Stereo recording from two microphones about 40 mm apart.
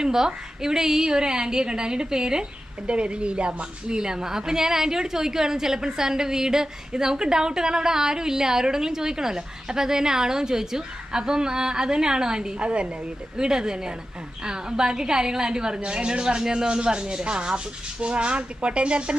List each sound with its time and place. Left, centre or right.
0.0 s a woman's voice: centre